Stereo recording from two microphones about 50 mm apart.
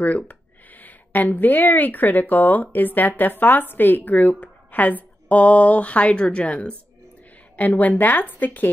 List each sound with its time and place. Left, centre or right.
0.0 s speech: left
7.5 s speech: left